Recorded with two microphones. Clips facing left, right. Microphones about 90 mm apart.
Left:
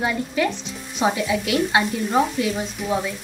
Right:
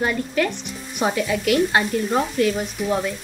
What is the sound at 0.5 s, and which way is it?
Speech, 60° right (ahead or behind).